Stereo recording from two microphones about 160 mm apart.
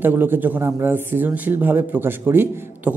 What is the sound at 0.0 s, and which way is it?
A man's voice, 10° right (ahead or behind).